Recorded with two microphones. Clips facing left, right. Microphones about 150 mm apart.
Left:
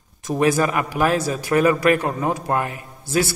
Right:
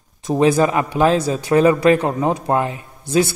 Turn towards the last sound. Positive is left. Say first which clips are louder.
# right 4 dB
turn(degrees=-20)  # may be behind; listen again after turning